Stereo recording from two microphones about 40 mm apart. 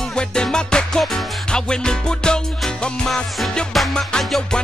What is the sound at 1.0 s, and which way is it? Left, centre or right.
Music, centre.